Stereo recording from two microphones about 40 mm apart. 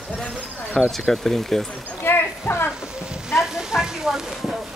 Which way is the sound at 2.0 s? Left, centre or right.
Left.